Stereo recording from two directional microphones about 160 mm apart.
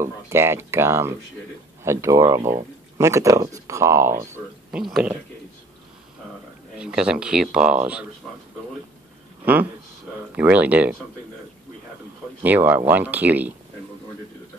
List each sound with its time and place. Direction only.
0.0 s speech: 15° right (ahead or behind)
6.8 s speech: 5° right (ahead or behind)
9.4 s speech: 10° right (ahead or behind)
12.4 s speech: 10° right (ahead or behind)